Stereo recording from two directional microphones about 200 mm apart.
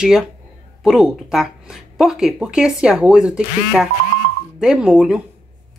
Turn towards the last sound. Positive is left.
turn(degrees=-5)  # may be behind; listen again after turning